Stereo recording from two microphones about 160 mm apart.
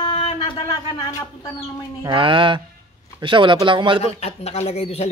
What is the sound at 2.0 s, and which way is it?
A man's voice, 30° right (ahead or behind).